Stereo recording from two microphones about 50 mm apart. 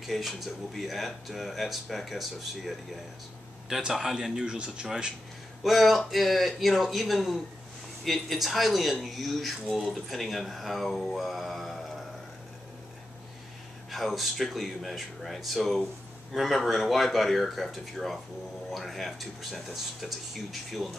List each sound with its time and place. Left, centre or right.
0.1 s speech: centre
3.8 s speech: centre
4.6 s speech: centre
5.6 s speech: centre
13.8 s speech: centre